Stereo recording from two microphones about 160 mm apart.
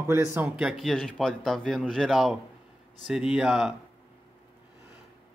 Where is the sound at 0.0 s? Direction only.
15° right (ahead or behind).